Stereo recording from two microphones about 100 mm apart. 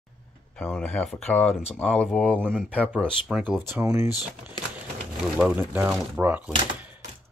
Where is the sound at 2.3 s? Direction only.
15° right (ahead or behind).